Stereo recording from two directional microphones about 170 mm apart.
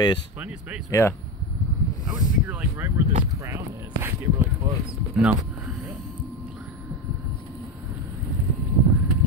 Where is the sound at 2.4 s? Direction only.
10° right (ahead or behind).